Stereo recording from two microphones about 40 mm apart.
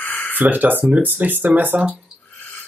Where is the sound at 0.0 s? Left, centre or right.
Left.